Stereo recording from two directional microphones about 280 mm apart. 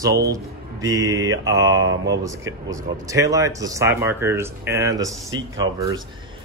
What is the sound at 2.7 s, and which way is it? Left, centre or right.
Speech, centre.